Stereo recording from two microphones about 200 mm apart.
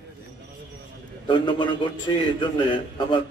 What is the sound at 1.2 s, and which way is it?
A man's voice, 25° left (ahead or behind).